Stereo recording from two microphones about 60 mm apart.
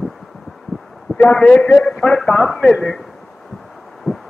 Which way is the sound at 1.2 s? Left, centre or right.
Centre.